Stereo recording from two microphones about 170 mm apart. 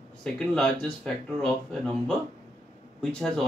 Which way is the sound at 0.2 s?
5° left (ahead or behind).